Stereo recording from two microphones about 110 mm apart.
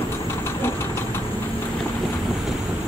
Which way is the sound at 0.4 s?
20° left (ahead or behind).